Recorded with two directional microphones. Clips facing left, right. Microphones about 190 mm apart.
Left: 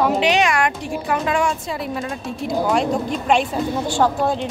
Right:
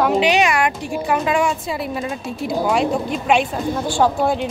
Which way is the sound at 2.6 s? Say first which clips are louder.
Right 1 dB; 5° right (ahead or behind).